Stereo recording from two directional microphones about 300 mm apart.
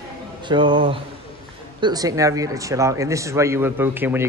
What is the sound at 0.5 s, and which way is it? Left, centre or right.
A man's voice, centre.